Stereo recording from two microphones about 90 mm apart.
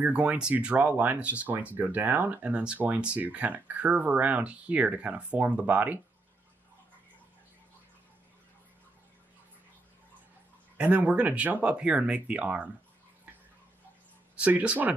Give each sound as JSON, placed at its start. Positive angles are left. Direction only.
{"t": 0.0, "sound": "speech", "side_deg": -15}
{"t": 10.8, "sound": "speech", "side_deg": -15}
{"t": 14.3, "sound": "speech", "side_deg": -15}